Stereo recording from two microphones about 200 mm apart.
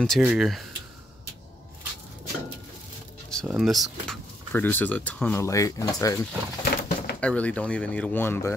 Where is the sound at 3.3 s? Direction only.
Centre (ahead or behind); by 5.8 s 15° left (ahead or behind).